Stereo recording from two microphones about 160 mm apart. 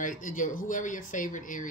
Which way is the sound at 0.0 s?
55° left (ahead or behind).